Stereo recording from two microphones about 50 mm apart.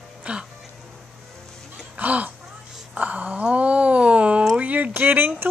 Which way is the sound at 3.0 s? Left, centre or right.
Right.